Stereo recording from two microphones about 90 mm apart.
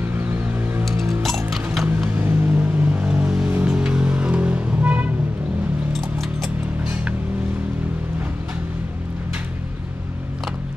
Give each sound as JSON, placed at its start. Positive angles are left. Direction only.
{"t": 0.0, "sound": "a sound", "side_deg": -20}
{"t": 1.2, "sound": "mechanisms", "side_deg": 0}
{"t": 2.1, "sound": "vehicle", "side_deg": -20}
{"t": 3.5, "sound": "music", "side_deg": -10}